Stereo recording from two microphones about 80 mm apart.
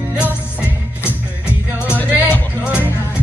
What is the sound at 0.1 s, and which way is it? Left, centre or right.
Music, centre.